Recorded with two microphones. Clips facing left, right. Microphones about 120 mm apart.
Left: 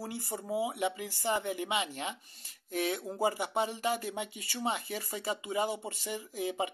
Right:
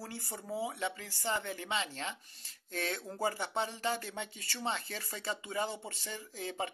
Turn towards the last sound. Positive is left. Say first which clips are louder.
# left 5 dB
turn(degrees=15)  # may be behind; listen again after turning